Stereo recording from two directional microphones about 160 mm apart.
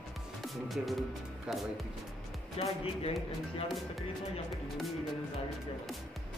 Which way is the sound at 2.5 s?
40° left (ahead or behind).